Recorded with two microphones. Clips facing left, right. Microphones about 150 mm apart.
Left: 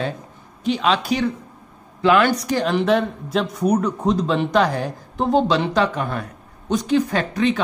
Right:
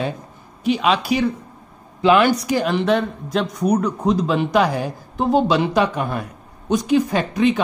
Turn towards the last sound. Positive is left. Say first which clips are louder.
# right 2 dB
turn(degrees=-15)  # may be behind; listen again after turning